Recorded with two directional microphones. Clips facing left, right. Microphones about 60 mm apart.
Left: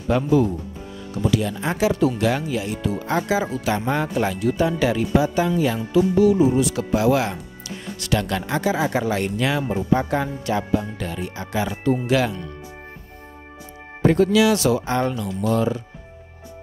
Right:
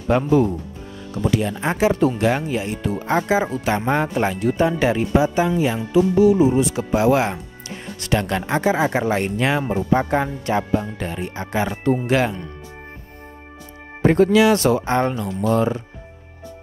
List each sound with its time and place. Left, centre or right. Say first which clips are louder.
0.1 s speech: right 2 dB; right
14.0 s speech: right 2 dB; right